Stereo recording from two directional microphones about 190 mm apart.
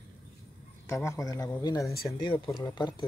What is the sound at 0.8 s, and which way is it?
A man's voice, 15° left (ahead or behind).